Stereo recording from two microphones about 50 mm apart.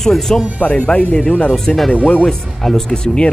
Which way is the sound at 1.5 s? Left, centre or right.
Centre.